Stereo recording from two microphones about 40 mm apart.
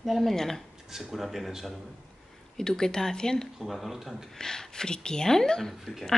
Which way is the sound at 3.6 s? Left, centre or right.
Centre.